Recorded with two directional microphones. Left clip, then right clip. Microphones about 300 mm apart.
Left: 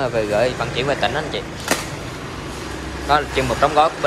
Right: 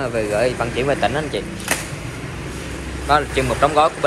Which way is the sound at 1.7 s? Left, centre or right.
Left.